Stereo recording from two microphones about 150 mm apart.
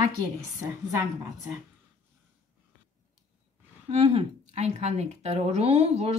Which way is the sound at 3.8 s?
40° right (ahead or behind).